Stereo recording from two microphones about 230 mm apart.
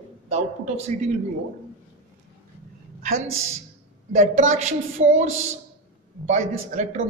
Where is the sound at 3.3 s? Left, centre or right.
Right.